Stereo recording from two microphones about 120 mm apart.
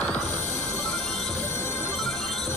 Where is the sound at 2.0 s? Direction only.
Centre (ahead or behind).